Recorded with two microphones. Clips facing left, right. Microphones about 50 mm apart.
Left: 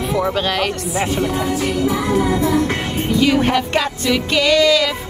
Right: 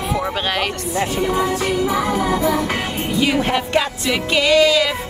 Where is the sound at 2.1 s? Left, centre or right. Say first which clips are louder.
Left 2 dB; right.